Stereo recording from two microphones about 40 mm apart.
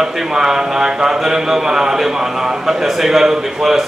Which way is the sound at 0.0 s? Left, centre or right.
Centre.